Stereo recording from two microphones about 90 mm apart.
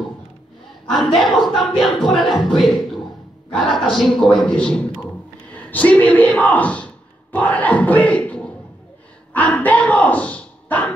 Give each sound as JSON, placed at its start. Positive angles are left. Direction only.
{"t": 0.8, "sound": "a man's voice", "side_deg": 5}
{"t": 3.7, "sound": "a man's voice", "side_deg": 5}